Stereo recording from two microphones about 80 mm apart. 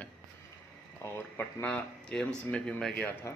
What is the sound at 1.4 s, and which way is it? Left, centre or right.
Speech, centre.